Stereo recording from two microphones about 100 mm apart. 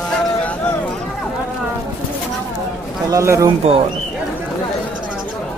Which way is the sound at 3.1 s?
30° right (ahead or behind).